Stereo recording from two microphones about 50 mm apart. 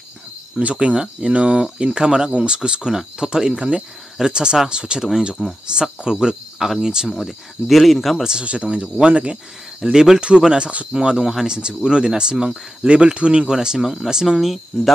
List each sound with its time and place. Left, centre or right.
0.6 s speech: right
7.2 s speech: centre
8.2 s speech: centre
8.5 s speech: right; by 14.6 s centre